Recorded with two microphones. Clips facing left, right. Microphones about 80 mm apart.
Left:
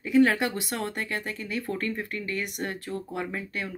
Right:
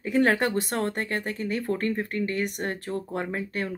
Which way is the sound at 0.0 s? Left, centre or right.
Right.